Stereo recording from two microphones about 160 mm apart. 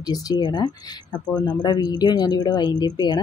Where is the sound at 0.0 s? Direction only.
25° left (ahead or behind).